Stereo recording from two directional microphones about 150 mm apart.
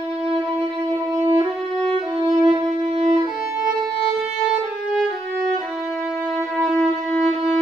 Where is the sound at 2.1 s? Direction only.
25° right (ahead or behind).